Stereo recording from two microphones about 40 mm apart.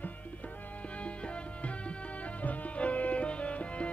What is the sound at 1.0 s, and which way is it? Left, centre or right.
Music, left.